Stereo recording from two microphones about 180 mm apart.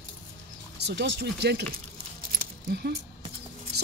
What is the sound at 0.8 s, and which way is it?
Speech, 70° right (ahead or behind).